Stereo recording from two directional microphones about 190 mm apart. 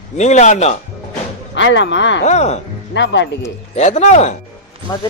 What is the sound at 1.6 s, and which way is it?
Speech, 70° left (ahead or behind).